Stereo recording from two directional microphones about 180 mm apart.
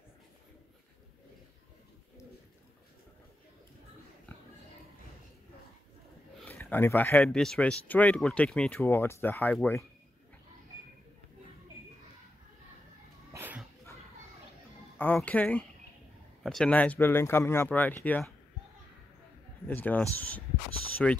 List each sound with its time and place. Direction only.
4.3 s pig: 10° left (ahead or behind)
6.3 s speech: 10° left (ahead or behind)
13.3 s dog: 10° right (ahead or behind)
15.0 s speech: 10° left (ahead or behind)
19.7 s speech: 10° left (ahead or behind)